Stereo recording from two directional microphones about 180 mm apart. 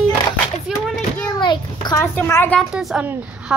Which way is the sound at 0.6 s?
Centre (ahead or behind).